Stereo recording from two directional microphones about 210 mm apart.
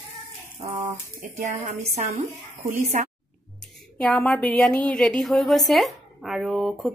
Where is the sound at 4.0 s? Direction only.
5° left (ahead or behind).